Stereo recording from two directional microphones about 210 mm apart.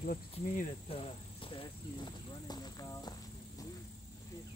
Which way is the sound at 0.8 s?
25° left (ahead or behind).